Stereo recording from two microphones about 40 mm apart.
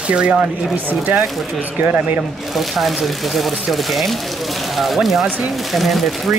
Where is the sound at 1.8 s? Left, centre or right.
Right.